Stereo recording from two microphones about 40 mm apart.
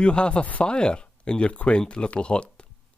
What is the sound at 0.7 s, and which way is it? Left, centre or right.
Speech, left.